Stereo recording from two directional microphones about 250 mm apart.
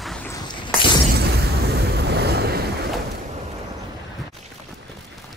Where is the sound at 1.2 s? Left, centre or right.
Right.